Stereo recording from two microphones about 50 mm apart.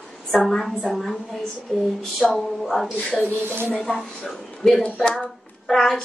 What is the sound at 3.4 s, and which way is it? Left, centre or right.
Speech, right.